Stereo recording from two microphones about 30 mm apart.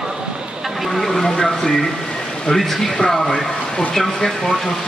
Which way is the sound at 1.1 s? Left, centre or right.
Centre.